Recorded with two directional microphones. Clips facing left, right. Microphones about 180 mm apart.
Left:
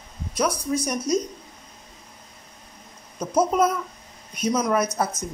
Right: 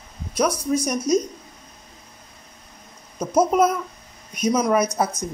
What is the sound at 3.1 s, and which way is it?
Speech, 10° right (ahead or behind).